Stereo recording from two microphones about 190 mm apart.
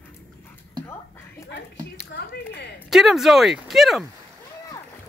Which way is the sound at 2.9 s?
Centre (ahead or behind).